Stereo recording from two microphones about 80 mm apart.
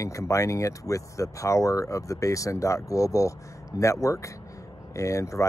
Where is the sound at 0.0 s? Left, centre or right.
Left.